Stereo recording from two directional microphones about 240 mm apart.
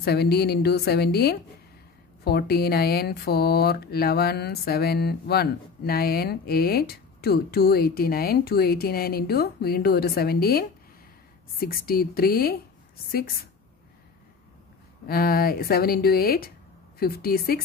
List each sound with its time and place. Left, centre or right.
0.0 s speech: left
11.6 s speech: left
15.0 s speech: left